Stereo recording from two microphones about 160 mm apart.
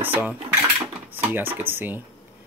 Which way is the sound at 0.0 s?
10° right (ahead or behind).